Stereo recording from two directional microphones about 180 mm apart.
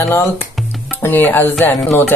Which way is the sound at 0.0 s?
15° left (ahead or behind).